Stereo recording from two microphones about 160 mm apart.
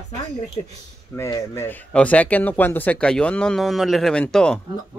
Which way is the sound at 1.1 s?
15° left (ahead or behind).